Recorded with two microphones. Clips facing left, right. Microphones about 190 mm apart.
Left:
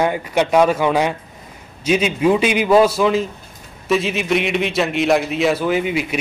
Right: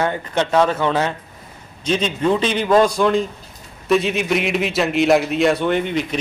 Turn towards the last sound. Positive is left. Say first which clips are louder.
# left 1 dB
turn(degrees=5)  # may be behind; listen again after turning